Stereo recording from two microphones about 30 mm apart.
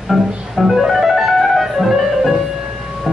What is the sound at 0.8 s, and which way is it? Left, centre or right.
Music, centre.